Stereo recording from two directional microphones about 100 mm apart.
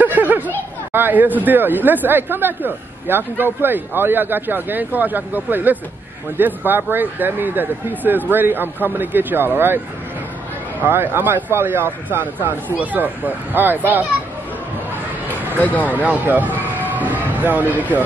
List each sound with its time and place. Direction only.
0.0 s a sound: 15° right (ahead or behind)
0.9 s speech: 20° right (ahead or behind)
10.8 s speech: 20° right (ahead or behind)
15.5 s speech: 15° left (ahead or behind)
15.9 s speech: 15° right (ahead or behind)